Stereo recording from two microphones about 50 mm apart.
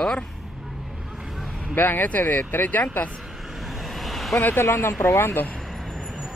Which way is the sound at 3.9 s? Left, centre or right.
Centre.